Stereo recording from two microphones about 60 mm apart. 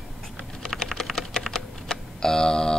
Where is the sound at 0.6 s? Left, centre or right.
Centre.